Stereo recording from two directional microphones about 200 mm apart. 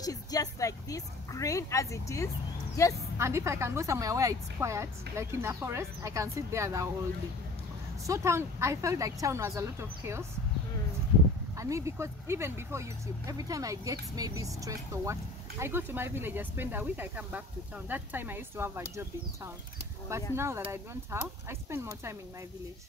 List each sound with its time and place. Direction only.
0.0 s speech: 20° left (ahead or behind)
3.2 s a woman's voice: 15° right (ahead or behind)
8.1 s a woman's voice: 15° right (ahead or behind)
11.5 s a woman's voice: 15° right (ahead or behind)